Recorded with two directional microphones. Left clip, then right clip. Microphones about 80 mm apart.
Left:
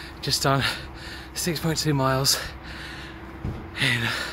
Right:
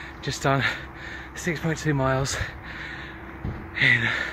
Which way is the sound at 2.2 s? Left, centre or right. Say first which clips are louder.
Left 5 dB; left.